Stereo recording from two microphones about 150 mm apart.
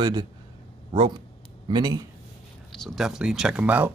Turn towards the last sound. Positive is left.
turn(degrees=-10)  # may be behind; listen again after turning